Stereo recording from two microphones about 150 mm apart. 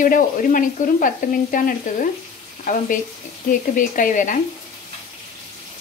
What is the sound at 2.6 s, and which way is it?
Speech, 60° left (ahead or behind).